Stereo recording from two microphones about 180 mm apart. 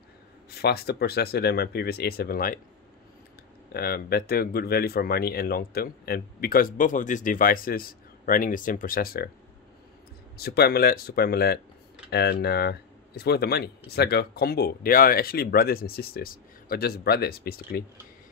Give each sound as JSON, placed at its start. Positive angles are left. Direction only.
{"t": 0.5, "sound": "speech", "side_deg": 60}
{"t": 3.7, "sound": "speech", "side_deg": 60}
{"t": 10.3, "sound": "speech", "side_deg": 60}